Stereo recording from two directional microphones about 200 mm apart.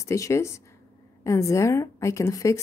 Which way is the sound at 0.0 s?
15° left (ahead or behind).